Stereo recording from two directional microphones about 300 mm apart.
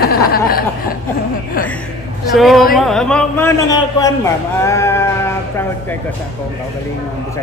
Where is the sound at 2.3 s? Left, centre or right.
Centre.